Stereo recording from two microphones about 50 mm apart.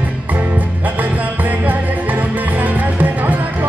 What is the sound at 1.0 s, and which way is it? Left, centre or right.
Music, right.